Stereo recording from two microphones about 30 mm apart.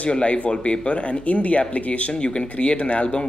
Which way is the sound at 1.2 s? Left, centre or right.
Left.